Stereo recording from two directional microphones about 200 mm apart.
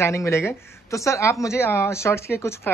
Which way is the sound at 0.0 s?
15° left (ahead or behind).